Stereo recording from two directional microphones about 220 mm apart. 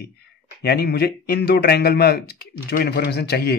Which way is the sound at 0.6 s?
45° left (ahead or behind).